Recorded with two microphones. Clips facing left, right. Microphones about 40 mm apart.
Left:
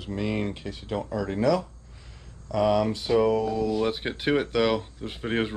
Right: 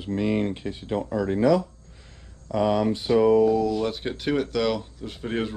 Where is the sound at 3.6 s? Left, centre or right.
Centre.